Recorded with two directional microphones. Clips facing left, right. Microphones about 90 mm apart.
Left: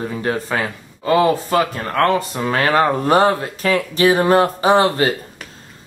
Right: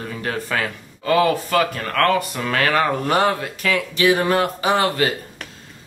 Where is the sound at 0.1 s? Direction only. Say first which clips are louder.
Even; 25° left (ahead or behind).